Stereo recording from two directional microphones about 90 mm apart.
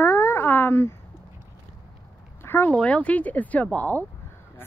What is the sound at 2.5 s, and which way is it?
Speech, 25° left (ahead or behind).